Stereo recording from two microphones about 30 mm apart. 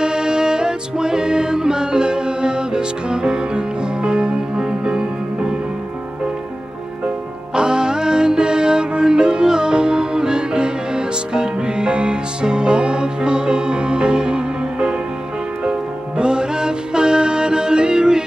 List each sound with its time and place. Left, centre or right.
0.0 s music: right
7.5 s music: right